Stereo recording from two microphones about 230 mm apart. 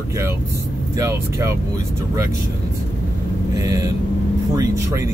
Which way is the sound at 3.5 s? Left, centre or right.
Centre.